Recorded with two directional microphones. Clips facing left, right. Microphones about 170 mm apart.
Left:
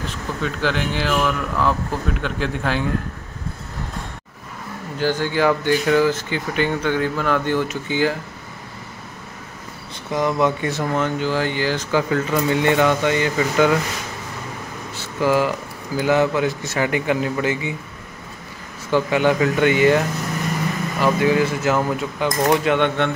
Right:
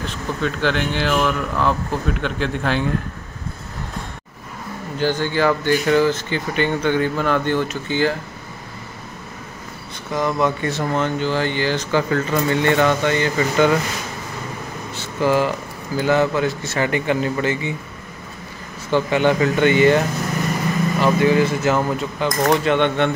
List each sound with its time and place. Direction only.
0.4 s a man's voice: 5° left (ahead or behind)
4.9 s speech: 5° left (ahead or behind)
10.1 s speech: 15° left (ahead or behind)
15.0 s a sound: 5° left (ahead or behind)
16.0 s speech: 10° left (ahead or behind)
18.9 s a man's voice: 5° left (ahead or behind)
21.0 s a man's voice: 5° left (ahead or behind)